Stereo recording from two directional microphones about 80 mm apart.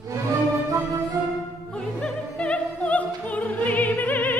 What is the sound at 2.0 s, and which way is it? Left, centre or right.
Opera, centre.